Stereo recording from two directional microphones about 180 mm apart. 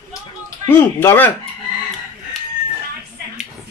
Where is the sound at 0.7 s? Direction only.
10° left (ahead or behind).